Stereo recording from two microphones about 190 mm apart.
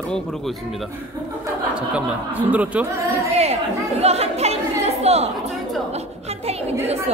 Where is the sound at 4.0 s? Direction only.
35° right (ahead or behind).